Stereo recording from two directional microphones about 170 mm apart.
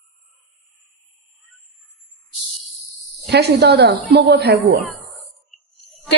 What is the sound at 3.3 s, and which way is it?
A woman's voice, 75° right (ahead or behind).